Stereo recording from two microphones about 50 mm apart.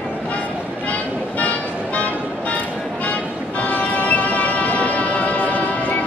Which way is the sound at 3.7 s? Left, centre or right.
Left.